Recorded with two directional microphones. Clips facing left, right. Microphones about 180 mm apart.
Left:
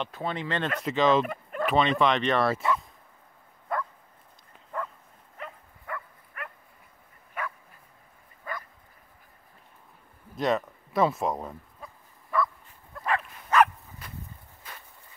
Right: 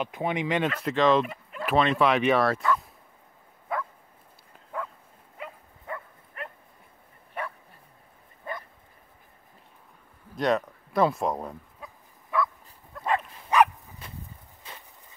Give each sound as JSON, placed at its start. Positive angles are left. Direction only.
{"t": 0.0, "sound": "speech", "side_deg": -15}
{"t": 0.8, "sound": "speech", "side_deg": 0}
{"t": 1.2, "sound": "dog", "side_deg": 50}
{"t": 1.7, "sound": "speech", "side_deg": 0}
{"t": 3.7, "sound": "bow-wow", "side_deg": -5}
{"t": 4.7, "sound": "dog", "side_deg": -10}
{"t": 5.9, "sound": "dog", "side_deg": -30}
{"t": 7.4, "sound": "bow-wow", "side_deg": -30}
{"t": 10.3, "sound": "dog", "side_deg": 0}
{"t": 13.5, "sound": "dog", "side_deg": -15}
{"t": 14.0, "sound": "a sound", "side_deg": -25}